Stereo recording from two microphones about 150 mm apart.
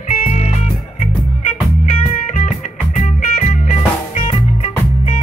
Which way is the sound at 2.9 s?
50° left (ahead or behind).